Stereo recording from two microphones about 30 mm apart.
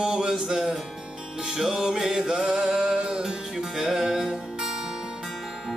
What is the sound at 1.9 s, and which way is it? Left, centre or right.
Mantra, centre.